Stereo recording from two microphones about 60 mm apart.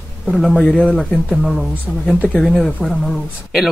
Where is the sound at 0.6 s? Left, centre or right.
Centre.